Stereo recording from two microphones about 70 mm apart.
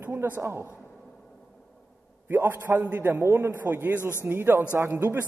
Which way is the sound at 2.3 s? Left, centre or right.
Right.